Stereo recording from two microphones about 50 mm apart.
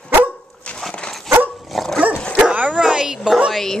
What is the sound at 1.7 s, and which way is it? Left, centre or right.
Dog, centre.